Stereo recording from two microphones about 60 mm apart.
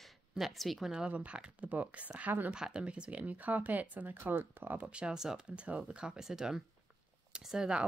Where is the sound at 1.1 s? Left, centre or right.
Right.